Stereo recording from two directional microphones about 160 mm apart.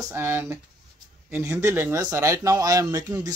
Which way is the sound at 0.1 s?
15° right (ahead or behind).